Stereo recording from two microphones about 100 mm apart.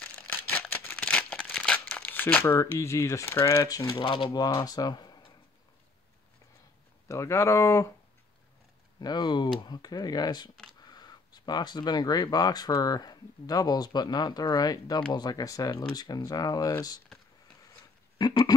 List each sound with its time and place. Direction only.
0.0 s a sound: 15° left (ahead or behind); by 3.3 s 30° left (ahead or behind)
3.4 s speech: 35° left (ahead or behind)
4.0 s speech: 55° left (ahead or behind)
7.1 s speech: 30° left (ahead or behind)
9.0 s speech: 45° left (ahead or behind)
18.1 s a sound: 45° left (ahead or behind)